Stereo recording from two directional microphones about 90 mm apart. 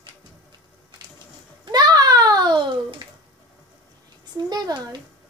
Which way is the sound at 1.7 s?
45° right (ahead or behind).